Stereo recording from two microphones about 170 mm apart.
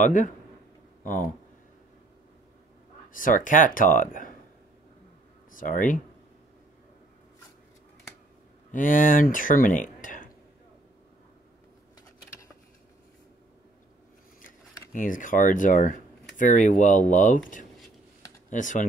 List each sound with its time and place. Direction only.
0.0 s speech: 50° left (ahead or behind)
3.1 s speech: 55° left (ahead or behind)
5.5 s speech: 50° left (ahead or behind)
8.7 s speech: 50° left (ahead or behind)
14.9 s speech: 50° left (ahead or behind)